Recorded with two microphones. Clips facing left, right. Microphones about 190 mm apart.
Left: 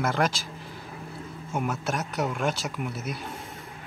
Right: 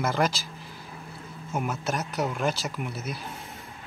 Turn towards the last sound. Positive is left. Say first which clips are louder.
# left 1 dB
turn(degrees=0)  # may be behind; listen again after turning